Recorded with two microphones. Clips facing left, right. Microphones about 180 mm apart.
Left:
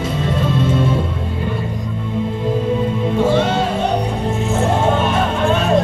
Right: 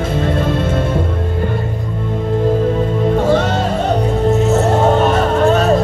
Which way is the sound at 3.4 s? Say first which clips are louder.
Even; 45° right (ahead or behind).